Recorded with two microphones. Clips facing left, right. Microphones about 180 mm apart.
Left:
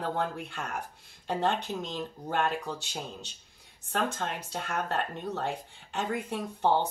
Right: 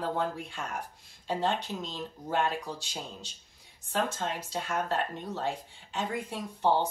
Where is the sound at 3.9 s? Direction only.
60° left (ahead or behind).